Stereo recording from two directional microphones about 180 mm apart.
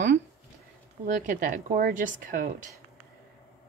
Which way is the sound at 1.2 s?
50° right (ahead or behind).